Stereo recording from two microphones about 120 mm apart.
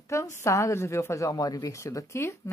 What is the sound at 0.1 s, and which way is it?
A woman's voice, 25° left (ahead or behind).